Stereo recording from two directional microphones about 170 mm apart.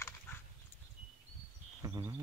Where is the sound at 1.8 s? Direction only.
20° right (ahead or behind).